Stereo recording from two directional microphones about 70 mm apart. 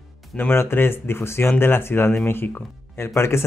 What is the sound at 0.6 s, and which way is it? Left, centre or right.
Speech, left.